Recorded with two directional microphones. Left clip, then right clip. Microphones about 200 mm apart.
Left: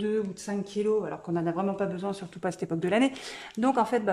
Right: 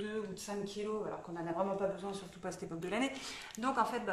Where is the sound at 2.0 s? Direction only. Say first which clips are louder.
Left 10 dB; 45° left (ahead or behind).